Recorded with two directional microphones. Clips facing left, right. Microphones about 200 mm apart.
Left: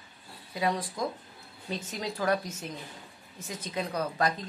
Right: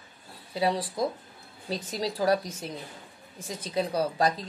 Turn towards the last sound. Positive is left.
turn(degrees=-35)  # may be behind; listen again after turning